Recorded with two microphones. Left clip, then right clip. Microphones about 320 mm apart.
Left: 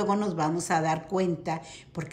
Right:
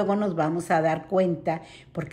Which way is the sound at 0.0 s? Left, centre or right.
Centre.